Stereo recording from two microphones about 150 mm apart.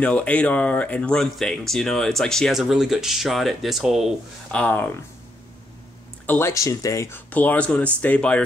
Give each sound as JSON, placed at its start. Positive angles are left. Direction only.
{"t": 0.0, "sound": "speech", "side_deg": 10}
{"t": 6.2, "sound": "speech", "side_deg": 15}
{"t": 7.2, "sound": "speech", "side_deg": 10}